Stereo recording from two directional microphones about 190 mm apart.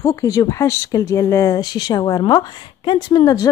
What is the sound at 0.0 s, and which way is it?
Speech, 20° left (ahead or behind).